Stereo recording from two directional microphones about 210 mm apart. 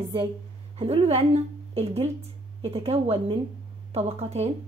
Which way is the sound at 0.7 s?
30° right (ahead or behind).